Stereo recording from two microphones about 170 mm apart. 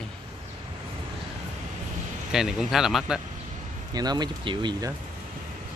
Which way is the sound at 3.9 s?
25° right (ahead or behind).